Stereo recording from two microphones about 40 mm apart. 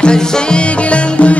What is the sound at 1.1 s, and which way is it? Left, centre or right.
Music, left.